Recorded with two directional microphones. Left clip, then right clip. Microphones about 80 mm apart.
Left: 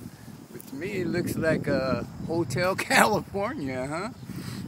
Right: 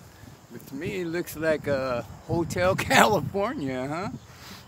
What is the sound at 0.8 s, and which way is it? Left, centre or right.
Speech, right.